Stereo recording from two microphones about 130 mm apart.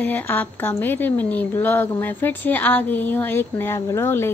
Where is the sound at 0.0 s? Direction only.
15° left (ahead or behind).